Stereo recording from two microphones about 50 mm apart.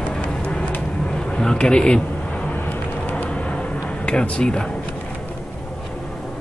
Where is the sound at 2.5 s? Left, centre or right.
Left.